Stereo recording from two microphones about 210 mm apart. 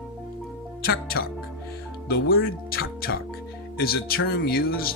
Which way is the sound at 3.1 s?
65° left (ahead or behind).